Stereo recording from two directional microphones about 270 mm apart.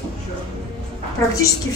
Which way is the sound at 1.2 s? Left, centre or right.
Centre.